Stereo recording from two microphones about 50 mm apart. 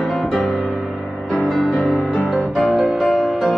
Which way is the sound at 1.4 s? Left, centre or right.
Centre.